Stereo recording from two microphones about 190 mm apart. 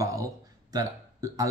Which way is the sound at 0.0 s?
15° right (ahead or behind).